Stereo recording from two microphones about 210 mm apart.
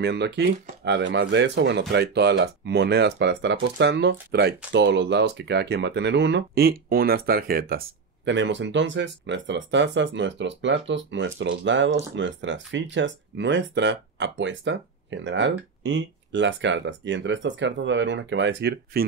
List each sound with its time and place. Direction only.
0.0 s speech: 55° right (ahead or behind)
8.3 s speech: 60° right (ahead or behind)